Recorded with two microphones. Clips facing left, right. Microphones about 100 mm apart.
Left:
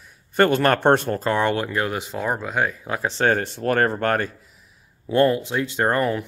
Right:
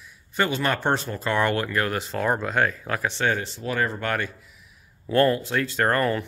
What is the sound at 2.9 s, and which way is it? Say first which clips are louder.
Speech: left 5 dB; 35° left (ahead or behind).